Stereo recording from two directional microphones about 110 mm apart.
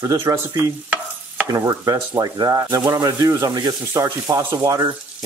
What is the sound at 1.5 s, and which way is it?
Speech, 35° right (ahead or behind).